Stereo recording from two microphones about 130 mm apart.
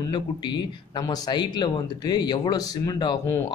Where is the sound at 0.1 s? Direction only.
35° left (ahead or behind).